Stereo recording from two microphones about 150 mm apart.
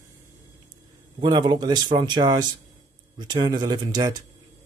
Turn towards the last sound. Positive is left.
turn(degrees=-30)  # may be behind; listen again after turning